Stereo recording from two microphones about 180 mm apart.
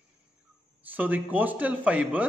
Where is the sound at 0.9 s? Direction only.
10° right (ahead or behind).